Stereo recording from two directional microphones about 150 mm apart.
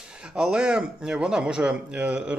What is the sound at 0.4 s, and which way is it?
A man's voice, 5° right (ahead or behind).